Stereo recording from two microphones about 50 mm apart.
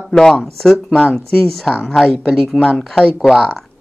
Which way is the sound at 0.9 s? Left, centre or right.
Centre.